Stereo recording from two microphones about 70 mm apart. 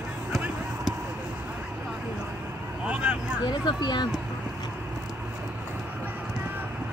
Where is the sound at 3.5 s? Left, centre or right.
Left.